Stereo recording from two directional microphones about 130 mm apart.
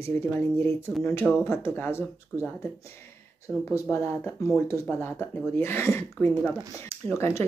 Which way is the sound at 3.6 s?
20° left (ahead or behind).